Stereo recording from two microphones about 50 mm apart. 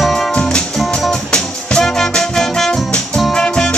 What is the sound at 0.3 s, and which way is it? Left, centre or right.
Music, centre.